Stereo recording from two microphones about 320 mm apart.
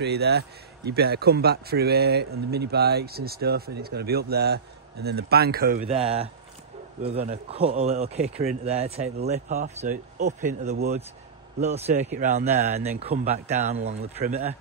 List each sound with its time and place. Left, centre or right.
0.0 s a man's voice: right
5.9 s a man's voice: centre